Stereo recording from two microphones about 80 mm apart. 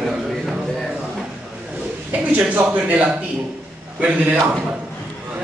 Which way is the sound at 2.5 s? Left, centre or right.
Right.